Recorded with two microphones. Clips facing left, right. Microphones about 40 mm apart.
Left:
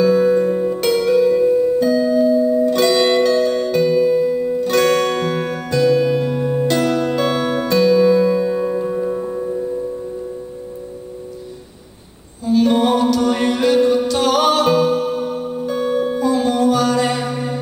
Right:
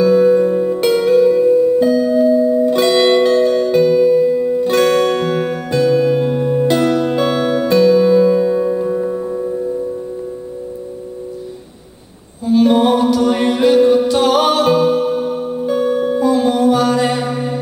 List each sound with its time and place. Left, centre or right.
0.0 s music: centre
0.7 s harp: centre
1.3 s music: centre
1.8 s music: centre
3.6 s music: centre
4.8 s music: right
5.1 s music: centre
12.4 s music: centre
13.1 s music: right